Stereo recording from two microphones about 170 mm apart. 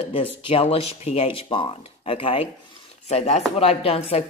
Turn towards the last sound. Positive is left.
turn(degrees=35)  # may be behind; listen again after turning